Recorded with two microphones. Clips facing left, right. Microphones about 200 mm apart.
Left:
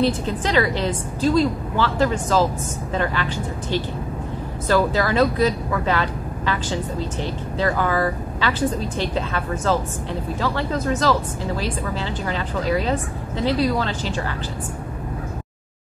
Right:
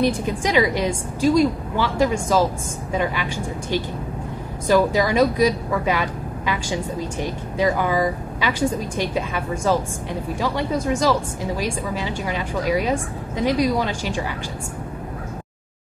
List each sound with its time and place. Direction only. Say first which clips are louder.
0.0 s speech: even; 10° right (ahead or behind)